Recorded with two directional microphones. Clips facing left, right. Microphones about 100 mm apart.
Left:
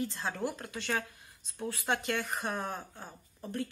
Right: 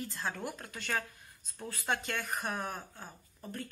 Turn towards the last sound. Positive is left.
turn(degrees=20)  # may be behind; listen again after turning